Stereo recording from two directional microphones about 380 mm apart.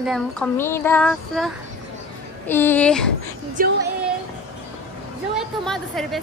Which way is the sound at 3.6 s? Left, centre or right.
Right.